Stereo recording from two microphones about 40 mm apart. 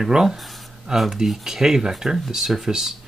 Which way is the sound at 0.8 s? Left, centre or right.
Centre.